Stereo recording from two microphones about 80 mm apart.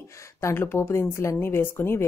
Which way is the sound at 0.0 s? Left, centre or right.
Left.